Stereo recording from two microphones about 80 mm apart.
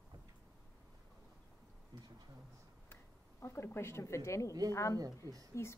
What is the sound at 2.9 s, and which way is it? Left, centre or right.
Speech, left.